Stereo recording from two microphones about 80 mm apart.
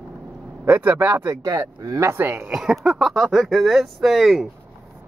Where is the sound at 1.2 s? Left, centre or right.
Right.